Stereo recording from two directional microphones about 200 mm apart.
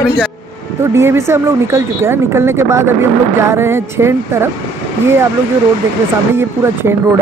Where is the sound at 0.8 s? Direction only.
15° right (ahead or behind).